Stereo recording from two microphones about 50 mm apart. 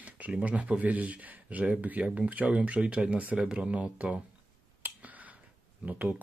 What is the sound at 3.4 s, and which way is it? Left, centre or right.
Speech, centre.